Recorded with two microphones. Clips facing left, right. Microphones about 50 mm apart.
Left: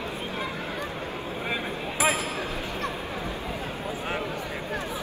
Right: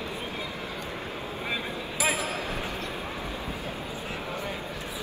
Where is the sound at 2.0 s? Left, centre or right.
Left.